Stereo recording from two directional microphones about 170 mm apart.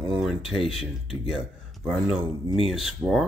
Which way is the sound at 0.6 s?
35° left (ahead or behind).